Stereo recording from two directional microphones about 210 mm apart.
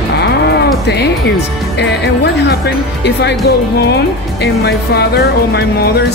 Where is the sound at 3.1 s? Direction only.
55° left (ahead or behind).